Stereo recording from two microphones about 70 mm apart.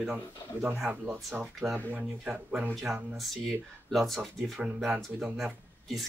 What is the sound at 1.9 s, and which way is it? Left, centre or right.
Speech, right.